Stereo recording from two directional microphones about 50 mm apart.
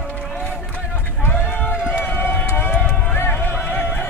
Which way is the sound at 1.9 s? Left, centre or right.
Left.